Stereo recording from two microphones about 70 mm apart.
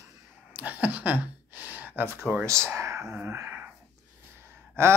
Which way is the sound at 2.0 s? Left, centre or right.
Right.